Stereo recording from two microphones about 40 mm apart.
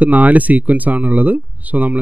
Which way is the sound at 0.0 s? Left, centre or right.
Right.